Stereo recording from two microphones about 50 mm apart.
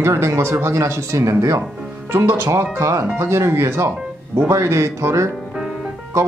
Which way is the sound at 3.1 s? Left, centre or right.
Right.